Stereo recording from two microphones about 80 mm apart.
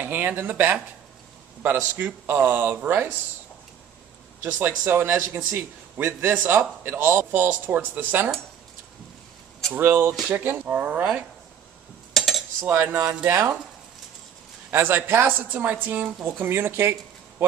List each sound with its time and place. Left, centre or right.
0.0 s a man's voice: right
4.4 s a man's voice: right
9.8 s a man's voice: right
12.1 s cutlery: centre
12.5 s a man's voice: right
13.3 s speech: right
14.7 s a man's voice: right